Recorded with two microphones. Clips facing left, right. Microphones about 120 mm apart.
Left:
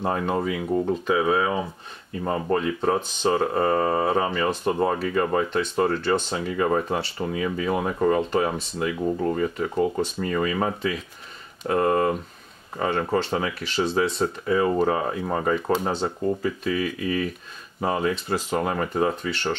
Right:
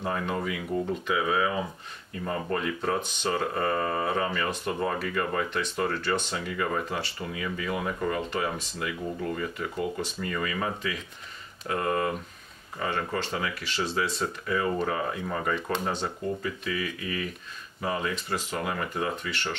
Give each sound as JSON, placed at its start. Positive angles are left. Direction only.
{"t": 0.0, "sound": "speech", "side_deg": 35}